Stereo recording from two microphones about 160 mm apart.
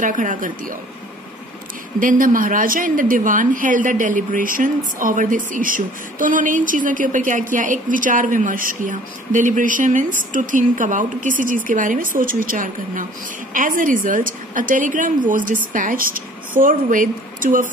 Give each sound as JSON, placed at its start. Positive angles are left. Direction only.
{"t": 0.0, "sound": "a woman's voice", "side_deg": -55}
{"t": 2.0, "sound": "a woman's voice", "side_deg": -55}